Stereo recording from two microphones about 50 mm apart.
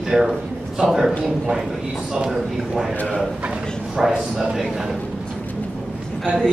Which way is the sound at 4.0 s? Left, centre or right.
Centre.